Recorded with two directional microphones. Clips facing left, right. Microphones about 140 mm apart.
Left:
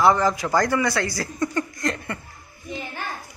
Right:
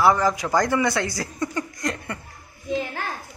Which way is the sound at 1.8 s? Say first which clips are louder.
Left 1 dB; 15° right (ahead or behind).